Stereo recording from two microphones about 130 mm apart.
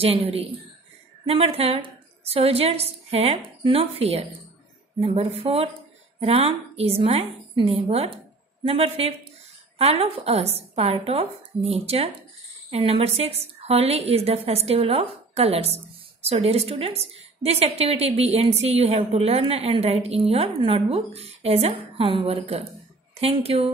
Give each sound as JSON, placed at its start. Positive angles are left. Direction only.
{"t": 0.0, "sound": "a woman's voice", "side_deg": -50}